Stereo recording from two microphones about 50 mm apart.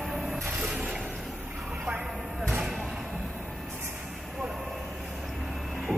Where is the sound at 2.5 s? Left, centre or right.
Centre.